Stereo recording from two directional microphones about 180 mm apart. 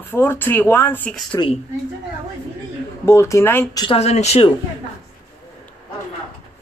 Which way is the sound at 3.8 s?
35° left (ahead or behind).